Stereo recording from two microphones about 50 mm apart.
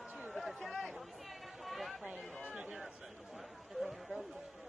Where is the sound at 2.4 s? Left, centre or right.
Right.